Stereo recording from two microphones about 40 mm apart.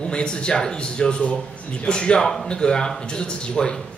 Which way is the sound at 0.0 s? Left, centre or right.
Left.